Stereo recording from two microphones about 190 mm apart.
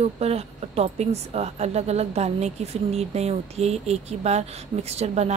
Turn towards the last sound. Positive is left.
turn(degrees=-35)  # may be behind; listen again after turning